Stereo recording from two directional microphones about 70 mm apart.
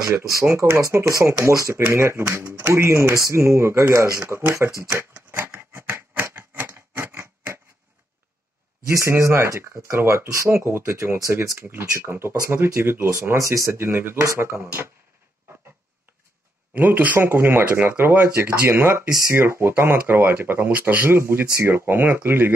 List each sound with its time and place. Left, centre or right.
0.5 s speech: right
5.3 s a sound: right
8.8 s speech: right
13.1 s speech: right
13.7 s speech: right
16.7 s speech: right